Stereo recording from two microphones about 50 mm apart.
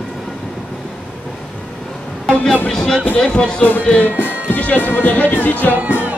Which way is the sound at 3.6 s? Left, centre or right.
Left.